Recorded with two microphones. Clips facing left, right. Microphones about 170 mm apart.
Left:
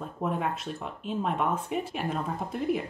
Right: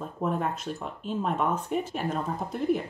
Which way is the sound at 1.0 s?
5° left (ahead or behind).